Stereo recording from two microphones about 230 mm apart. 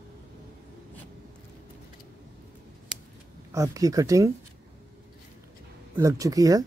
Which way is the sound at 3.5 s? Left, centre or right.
Centre.